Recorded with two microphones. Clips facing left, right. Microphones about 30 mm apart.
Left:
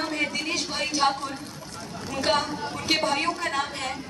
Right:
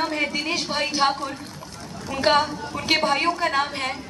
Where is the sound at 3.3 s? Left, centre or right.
Right.